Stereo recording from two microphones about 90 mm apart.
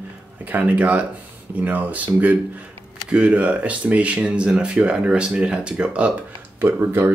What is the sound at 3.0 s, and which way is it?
Speech, 10° right (ahead or behind).